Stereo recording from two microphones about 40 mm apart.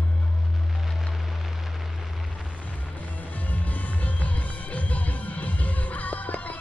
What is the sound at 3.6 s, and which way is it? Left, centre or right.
Music, left.